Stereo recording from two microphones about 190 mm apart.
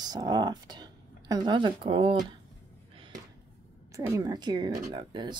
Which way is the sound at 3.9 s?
20° right (ahead or behind).